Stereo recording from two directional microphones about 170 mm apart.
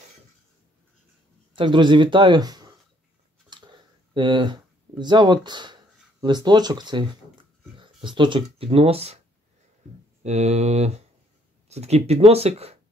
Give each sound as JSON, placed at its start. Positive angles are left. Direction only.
{"t": 1.5, "sound": "speech", "side_deg": -30}
{"t": 3.4, "sound": "a sound", "side_deg": -25}
{"t": 6.2, "sound": "speech", "side_deg": -25}
{"t": 10.2, "sound": "speech", "side_deg": -40}